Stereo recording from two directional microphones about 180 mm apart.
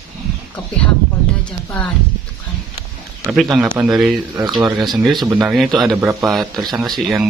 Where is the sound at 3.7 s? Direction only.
15° right (ahead or behind).